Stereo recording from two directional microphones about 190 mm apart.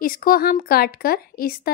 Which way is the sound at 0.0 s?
50° left (ahead or behind).